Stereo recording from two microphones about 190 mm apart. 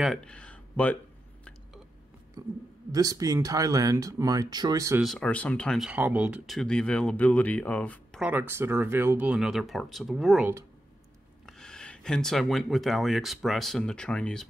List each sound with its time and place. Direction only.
0.0 s speech: 5° left (ahead or behind)
2.9 s speech: 20° right (ahead or behind)
5.0 s speech: 5° left (ahead or behind)
8.2 s speech: 10° right (ahead or behind)